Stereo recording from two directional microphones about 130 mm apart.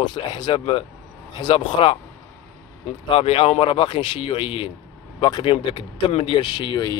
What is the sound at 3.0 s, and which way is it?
Speech, 45° left (ahead or behind).